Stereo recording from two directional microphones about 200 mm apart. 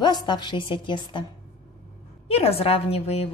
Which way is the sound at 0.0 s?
20° left (ahead or behind).